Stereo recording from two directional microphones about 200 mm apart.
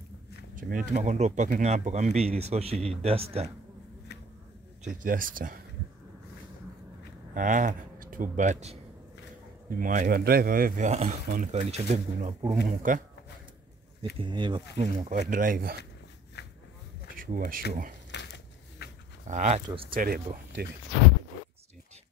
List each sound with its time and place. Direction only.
0.6 s speech: 45° right (ahead or behind)
4.8 s speech: 45° right (ahead or behind)
7.3 s speech: 40° right (ahead or behind)
14.1 s speech: 25° right (ahead or behind)
14.8 s speech: 35° right (ahead or behind)
16.4 s a sound: 55° left (ahead or behind)
17.1 s a sound: 45° right (ahead or behind)
17.4 s speech: 45° right (ahead or behind)
18.1 s a sound: 60° left (ahead or behind)
19.2 s speech: 35° right (ahead or behind)
19.9 s speech: 45° right (ahead or behind)